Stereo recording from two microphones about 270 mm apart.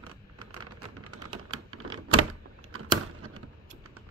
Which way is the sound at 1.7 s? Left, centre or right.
Right.